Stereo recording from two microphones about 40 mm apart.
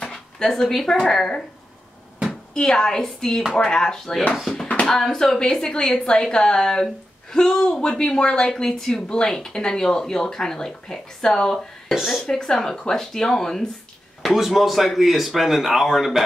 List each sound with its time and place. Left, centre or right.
0.0 s a sound: centre
1.0 s speech: centre
2.5 s speech: centre
14.3 s speech: centre